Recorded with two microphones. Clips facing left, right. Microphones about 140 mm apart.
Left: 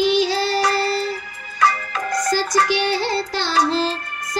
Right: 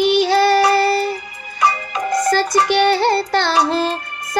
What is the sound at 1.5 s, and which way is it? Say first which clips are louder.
Music: right 1 dB; 20° right (ahead or behind).